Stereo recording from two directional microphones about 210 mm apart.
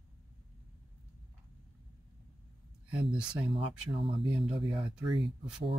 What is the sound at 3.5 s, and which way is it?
Speech, 25° right (ahead or behind).